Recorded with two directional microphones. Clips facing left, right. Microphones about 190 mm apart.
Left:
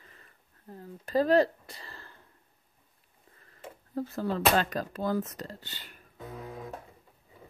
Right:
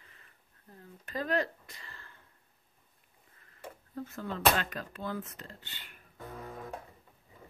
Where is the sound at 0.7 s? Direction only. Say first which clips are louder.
Left 11 dB; 35° left (ahead or behind).